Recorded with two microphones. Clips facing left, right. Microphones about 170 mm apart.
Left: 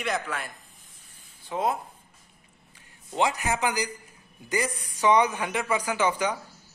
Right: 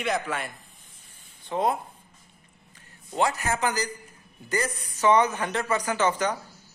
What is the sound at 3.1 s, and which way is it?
A man's voice, 15° left (ahead or behind).